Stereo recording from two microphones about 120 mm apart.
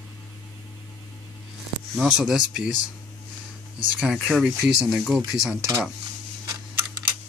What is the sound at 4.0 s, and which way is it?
Speech, 5° right (ahead or behind).